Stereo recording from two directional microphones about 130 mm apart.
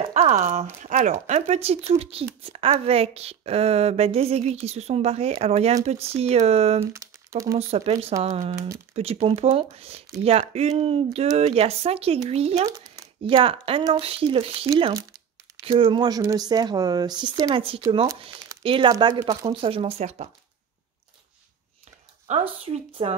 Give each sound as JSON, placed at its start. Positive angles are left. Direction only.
{"t": 0.0, "sound": "a woman's voice", "side_deg": -60}
{"t": 6.8, "sound": "speech", "side_deg": -20}
{"t": 7.5, "sound": "a woman's voice", "side_deg": -50}
{"t": 8.9, "sound": "a woman's voice", "side_deg": -50}
{"t": 12.6, "sound": "a sound", "side_deg": -25}
{"t": 13.2, "sound": "a woman's voice", "side_deg": -40}
{"t": 17.5, "sound": "a woman's voice", "side_deg": -45}
{"t": 22.3, "sound": "a woman's voice", "side_deg": -55}
{"t": 23.0, "sound": "a woman's voice", "side_deg": -45}